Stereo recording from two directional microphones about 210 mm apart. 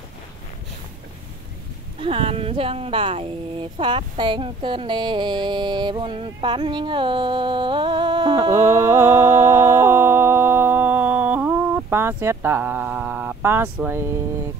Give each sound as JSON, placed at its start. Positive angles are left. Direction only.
{"t": 2.0, "sound": "speech", "side_deg": -25}